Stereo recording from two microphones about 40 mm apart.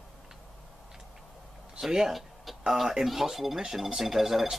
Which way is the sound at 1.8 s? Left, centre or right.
Centre.